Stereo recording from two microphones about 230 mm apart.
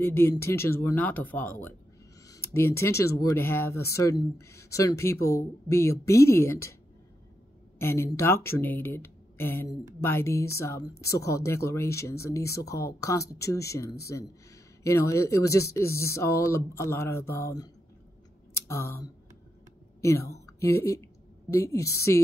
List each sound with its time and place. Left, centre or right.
0.0 s speech: centre
7.8 s a woman's voice: centre